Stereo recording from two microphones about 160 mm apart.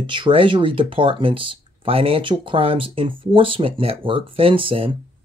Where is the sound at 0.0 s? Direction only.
30° right (ahead or behind).